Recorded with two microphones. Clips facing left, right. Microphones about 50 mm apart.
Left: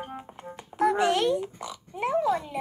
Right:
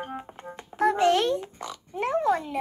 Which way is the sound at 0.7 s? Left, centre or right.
Centre.